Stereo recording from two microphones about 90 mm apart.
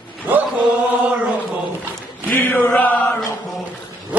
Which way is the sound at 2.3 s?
20° left (ahead or behind).